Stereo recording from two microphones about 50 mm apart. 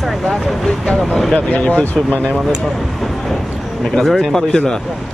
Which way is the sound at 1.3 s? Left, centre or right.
Left.